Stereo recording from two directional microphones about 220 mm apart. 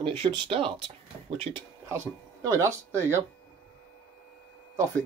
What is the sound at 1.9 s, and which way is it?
Speech, 15° right (ahead or behind).